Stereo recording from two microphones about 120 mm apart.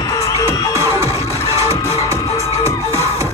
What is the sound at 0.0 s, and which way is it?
Music, 25° left (ahead or behind).